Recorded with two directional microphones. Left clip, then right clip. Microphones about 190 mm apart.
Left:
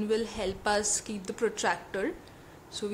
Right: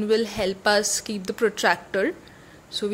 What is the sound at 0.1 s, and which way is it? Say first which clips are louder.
A woman's voice: right 8 dB; 20° right (ahead or behind).